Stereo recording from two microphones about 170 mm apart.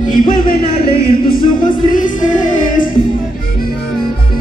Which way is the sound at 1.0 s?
60° left (ahead or behind).